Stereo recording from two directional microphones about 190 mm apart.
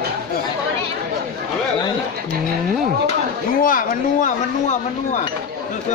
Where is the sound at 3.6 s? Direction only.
45° left (ahead or behind).